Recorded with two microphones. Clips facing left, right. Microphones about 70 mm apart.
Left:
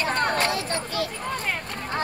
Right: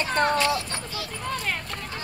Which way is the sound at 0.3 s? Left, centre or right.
Left.